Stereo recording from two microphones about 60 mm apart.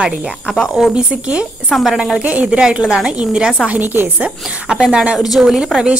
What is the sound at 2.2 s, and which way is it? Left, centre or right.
Speech, right.